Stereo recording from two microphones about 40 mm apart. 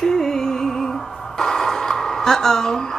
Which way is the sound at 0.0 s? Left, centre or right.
Centre.